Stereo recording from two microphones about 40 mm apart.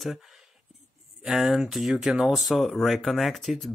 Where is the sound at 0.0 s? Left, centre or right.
Centre.